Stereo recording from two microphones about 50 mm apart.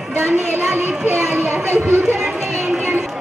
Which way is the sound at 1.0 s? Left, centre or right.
Right.